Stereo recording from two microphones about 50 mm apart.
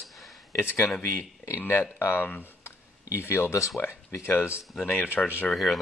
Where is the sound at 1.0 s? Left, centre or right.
Left.